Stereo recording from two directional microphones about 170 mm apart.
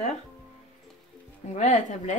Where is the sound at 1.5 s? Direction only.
45° left (ahead or behind).